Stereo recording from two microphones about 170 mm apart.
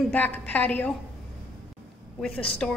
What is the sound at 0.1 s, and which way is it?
Speech, 10° left (ahead or behind).